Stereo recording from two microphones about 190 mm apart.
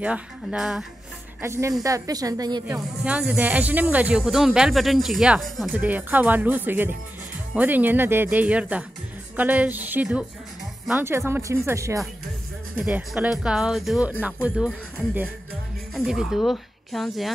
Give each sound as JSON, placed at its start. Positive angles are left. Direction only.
{"t": 0.0, "sound": "speech", "side_deg": -5}
{"t": 1.4, "sound": "speech", "side_deg": -15}
{"t": 3.0, "sound": "speech", "side_deg": -5}
{"t": 15.9, "sound": "speech", "side_deg": -5}